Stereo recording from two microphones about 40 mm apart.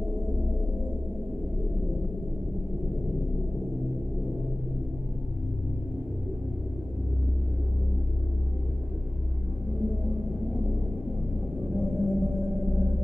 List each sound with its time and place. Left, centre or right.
9.7 s music: centre